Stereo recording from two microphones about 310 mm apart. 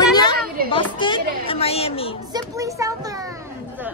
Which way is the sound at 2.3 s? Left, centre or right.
Centre.